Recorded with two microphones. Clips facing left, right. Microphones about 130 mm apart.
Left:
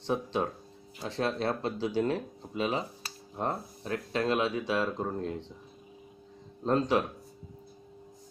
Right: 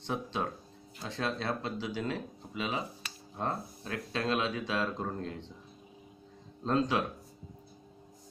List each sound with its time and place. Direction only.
0.0 s speech: 30° left (ahead or behind)
6.6 s speech: 25° left (ahead or behind)